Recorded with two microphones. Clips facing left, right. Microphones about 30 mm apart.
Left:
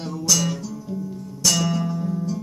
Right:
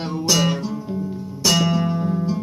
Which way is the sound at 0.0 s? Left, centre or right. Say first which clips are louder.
Right 3 dB; right.